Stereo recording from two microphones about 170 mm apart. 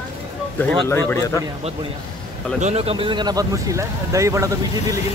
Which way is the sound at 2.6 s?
40° right (ahead or behind).